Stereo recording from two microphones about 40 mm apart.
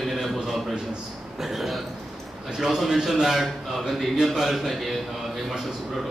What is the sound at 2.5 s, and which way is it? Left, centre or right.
Mantra, centre.